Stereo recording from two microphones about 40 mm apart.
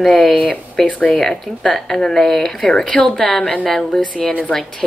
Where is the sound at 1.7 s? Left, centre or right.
Centre.